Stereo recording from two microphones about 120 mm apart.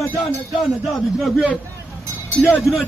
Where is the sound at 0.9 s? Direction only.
Centre (ahead or behind).